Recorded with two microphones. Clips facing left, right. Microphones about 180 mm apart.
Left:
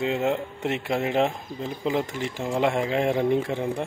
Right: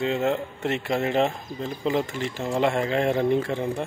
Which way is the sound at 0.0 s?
10° left (ahead or behind).